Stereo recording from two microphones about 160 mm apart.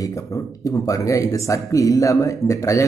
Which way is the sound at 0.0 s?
20° left (ahead or behind).